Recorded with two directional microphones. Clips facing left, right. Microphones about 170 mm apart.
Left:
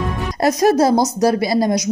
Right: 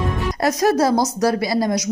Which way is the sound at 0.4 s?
25° left (ahead or behind).